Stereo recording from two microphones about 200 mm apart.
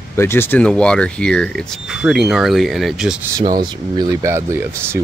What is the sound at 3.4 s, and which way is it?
Speech, 20° right (ahead or behind).